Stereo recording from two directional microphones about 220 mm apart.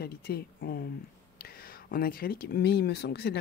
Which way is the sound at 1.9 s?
40° left (ahead or behind).